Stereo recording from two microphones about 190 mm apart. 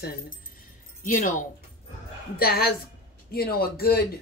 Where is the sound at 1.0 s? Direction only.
45° left (ahead or behind).